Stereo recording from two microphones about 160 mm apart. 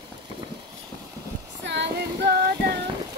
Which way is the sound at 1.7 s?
90° right.